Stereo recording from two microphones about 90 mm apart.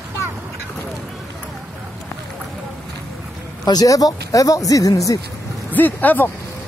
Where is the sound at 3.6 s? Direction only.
45° left (ahead or behind).